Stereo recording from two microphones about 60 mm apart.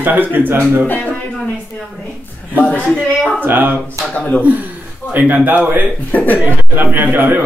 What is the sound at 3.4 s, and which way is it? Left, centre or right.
Speech, right.